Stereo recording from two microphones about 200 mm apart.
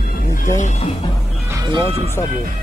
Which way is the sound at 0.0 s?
45° left (ahead or behind).